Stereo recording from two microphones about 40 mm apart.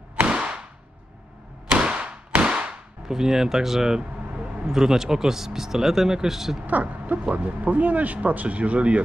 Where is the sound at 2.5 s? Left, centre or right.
Right.